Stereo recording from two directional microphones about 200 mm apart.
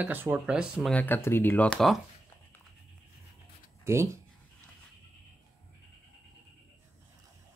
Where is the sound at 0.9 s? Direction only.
10° left (ahead or behind).